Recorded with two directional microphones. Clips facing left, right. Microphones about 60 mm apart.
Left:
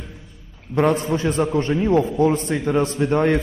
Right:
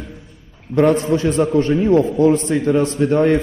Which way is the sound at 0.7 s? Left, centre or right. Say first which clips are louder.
Right 4 dB; right.